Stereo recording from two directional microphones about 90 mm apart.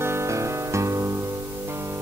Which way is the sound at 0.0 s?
30° right (ahead or behind).